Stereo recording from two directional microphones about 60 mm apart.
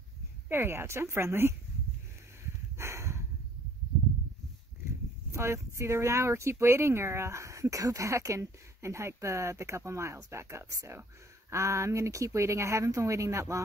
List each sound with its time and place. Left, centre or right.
0.5 s speech: right
2.8 s snort: right
5.3 s speech: right